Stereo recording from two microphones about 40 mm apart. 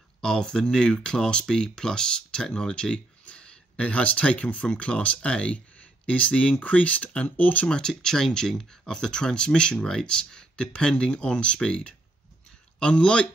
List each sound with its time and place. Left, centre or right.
0.2 s speech: centre; by 7.6 s left
7.6 s speech: centre